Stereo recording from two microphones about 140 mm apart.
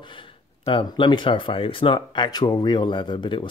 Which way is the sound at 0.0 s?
35° left (ahead or behind).